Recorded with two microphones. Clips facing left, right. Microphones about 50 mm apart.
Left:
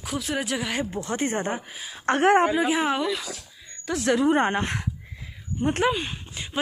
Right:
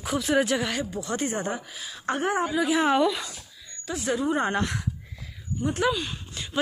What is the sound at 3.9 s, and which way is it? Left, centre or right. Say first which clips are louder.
Speech: left 5 dB; left.